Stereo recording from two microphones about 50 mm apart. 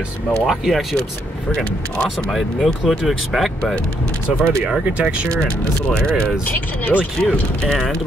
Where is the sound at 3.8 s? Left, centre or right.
Left.